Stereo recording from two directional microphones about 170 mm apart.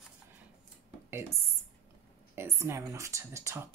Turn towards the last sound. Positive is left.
turn(degrees=-15)  # may be behind; listen again after turning